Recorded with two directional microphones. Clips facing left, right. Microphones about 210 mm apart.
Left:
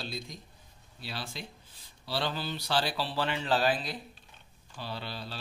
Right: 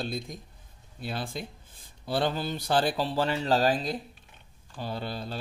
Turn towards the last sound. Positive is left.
turn(degrees=-45)  # may be behind; listen again after turning